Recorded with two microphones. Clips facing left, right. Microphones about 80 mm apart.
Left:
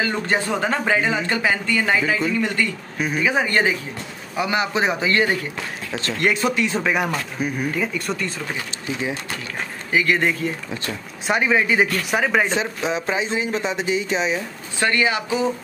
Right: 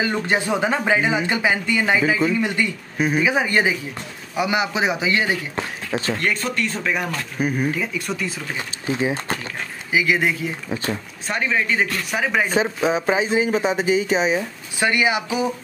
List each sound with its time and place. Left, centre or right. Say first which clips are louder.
0.1 s speech: right 1 dB; centre
3.0 s speech: right 2 dB; centre
6.1 s speech: left 3 dB; centre
8.5 s speech: right 3 dB; right
9.9 s speech: even; centre
11.2 s speech: left 3 dB; centre
12.1 s speech: left 2 dB; centre
12.5 s speech: right 4 dB; centre